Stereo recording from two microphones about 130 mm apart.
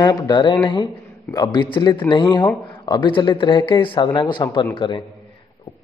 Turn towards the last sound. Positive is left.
turn(degrees=40)  # may be behind; listen again after turning